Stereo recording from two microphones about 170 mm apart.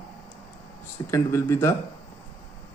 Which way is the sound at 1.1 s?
15° left (ahead or behind).